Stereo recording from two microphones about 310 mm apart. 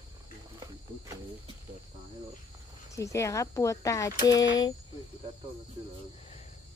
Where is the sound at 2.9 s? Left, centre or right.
Centre.